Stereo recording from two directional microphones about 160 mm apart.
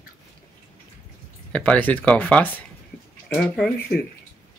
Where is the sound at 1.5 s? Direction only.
5° left (ahead or behind).